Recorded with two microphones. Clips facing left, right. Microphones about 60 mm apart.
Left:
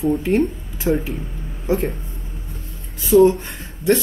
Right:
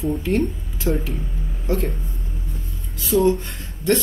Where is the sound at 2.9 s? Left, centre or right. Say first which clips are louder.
Left 5 dB; left.